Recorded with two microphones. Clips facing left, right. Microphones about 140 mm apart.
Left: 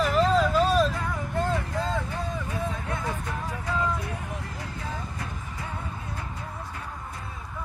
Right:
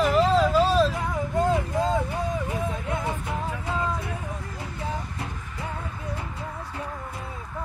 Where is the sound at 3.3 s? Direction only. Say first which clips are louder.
Right 2 dB; 20° right (ahead or behind).